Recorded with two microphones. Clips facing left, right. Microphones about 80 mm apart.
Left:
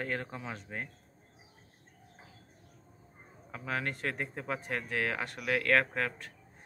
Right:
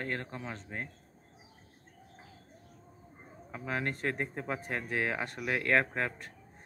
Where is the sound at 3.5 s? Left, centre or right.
Centre.